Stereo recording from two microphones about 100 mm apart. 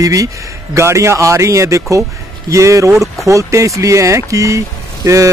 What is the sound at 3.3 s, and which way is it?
Speech, 30° right (ahead or behind).